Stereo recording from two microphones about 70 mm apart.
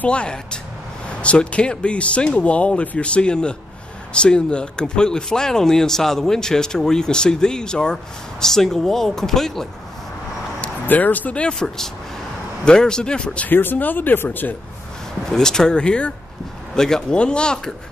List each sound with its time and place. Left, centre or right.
0.0 s speech: centre
10.6 s speech: left
13.5 s speech: left
15.2 s speech: centre